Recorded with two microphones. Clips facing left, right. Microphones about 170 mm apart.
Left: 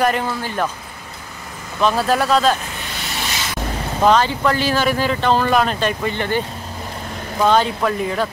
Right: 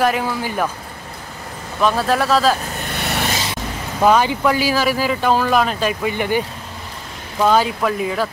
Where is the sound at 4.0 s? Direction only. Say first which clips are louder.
Right 1 dB; 10° right (ahead or behind).